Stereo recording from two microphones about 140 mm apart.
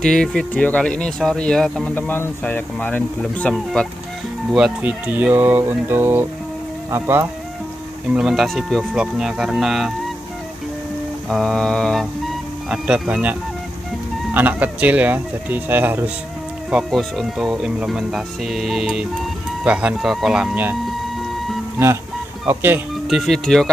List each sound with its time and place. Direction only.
0.0 s speech: 5° left (ahead or behind)
4.5 s speech: 5° right (ahead or behind)
8.1 s speech: 5° right (ahead or behind)
11.2 s speech: 5° left (ahead or behind); by 16.1 s 15° right (ahead or behind)
16.7 s speech: 5° right (ahead or behind)
21.8 s speech: 20° right (ahead or behind)
23.0 s speech: centre (ahead or behind)